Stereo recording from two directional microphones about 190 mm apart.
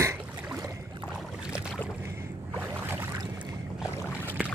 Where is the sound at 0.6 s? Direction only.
15° right (ahead or behind).